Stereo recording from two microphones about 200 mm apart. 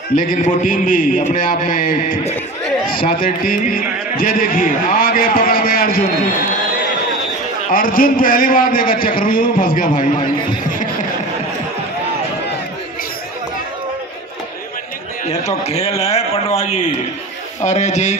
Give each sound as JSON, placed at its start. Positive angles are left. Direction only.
{"t": 0.1, "sound": "speech", "side_deg": 40}
{"t": 7.6, "sound": "speech", "side_deg": 45}
{"t": 15.2, "sound": "a man's voice", "side_deg": 30}